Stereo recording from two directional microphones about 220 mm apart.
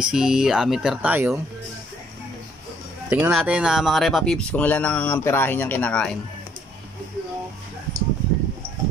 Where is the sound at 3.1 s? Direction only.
10° right (ahead or behind).